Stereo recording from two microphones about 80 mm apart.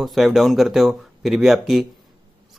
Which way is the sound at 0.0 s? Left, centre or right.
Centre.